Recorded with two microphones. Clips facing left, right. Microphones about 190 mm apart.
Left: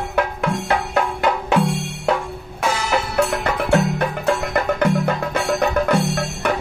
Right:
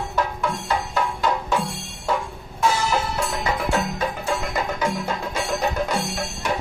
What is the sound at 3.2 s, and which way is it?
Wood block, 65° left (ahead or behind).